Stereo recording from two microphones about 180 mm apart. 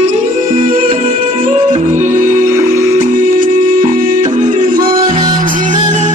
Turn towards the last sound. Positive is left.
turn(degrees=-45)  # may be behind; listen again after turning